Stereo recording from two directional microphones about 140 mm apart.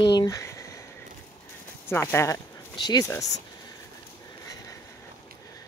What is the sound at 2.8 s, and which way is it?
Speech, 30° left (ahead or behind).